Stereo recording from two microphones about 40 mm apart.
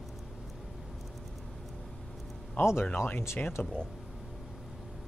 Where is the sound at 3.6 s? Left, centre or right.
Left.